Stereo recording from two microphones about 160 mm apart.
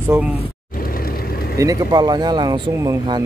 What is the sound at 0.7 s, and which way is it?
Vehicle, 65° left (ahead or behind).